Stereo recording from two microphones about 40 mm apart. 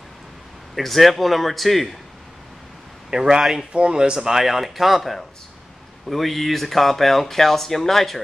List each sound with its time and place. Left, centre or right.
0.7 s speech: centre
3.1 s speech: centre